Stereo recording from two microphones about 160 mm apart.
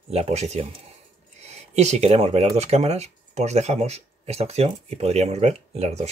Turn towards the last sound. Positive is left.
turn(degrees=-40)  # may be behind; listen again after turning